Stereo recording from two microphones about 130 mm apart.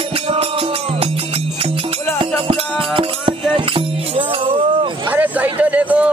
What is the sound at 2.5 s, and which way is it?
Music, 45° right (ahead or behind).